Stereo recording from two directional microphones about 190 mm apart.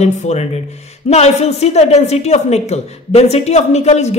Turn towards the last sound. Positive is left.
turn(degrees=35)  # may be behind; listen again after turning